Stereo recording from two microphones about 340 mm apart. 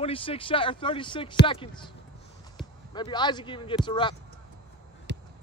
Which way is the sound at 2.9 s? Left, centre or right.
Centre.